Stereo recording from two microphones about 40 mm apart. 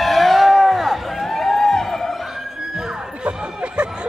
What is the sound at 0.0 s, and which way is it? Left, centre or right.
Music, centre.